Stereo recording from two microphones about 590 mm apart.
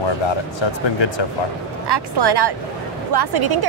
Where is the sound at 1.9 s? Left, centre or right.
Right.